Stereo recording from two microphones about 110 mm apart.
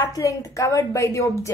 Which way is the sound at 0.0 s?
30° left (ahead or behind).